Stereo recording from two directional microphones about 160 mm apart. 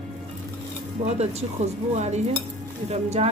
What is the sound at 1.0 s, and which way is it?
Speech, 45° right (ahead or behind).